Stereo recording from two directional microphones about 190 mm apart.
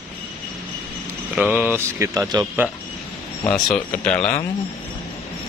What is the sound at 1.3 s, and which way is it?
Speech, 5° right (ahead or behind).